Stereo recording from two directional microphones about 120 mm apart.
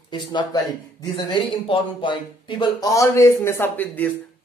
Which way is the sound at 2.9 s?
25° left (ahead or behind).